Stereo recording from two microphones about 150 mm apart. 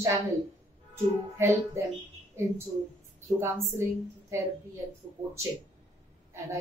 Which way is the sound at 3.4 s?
20° right (ahead or behind).